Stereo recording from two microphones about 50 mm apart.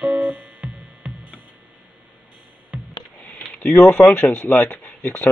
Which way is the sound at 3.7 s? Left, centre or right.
Centre.